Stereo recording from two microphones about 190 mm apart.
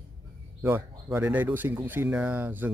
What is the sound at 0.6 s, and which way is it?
Speech, 10° right (ahead or behind).